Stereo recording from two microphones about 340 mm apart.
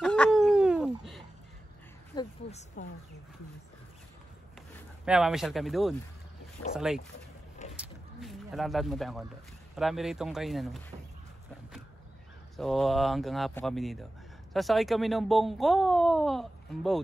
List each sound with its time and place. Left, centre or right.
0.0 s a sound: centre
2.8 s speech: left
4.7 s speech: centre
7.8 s a sound: centre
9.8 s speech: centre
12.5 s speech: centre